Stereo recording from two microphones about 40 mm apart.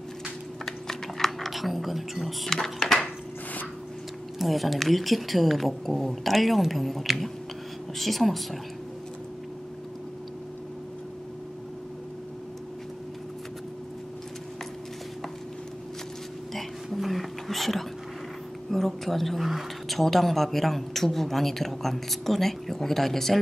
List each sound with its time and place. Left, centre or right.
0.7 s typing: centre
4.4 s a woman's voice: centre
16.5 s a sound: centre
18.7 s speech: centre